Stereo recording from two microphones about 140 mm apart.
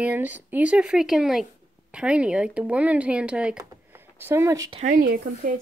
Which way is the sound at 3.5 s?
15° right (ahead or behind).